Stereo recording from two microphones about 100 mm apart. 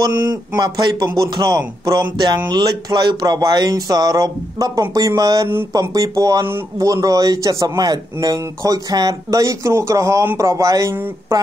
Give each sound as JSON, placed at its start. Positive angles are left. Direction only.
{"t": 0.6, "sound": "a man's voice", "side_deg": -45}